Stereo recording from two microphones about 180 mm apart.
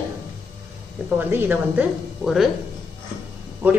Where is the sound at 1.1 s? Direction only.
10° right (ahead or behind).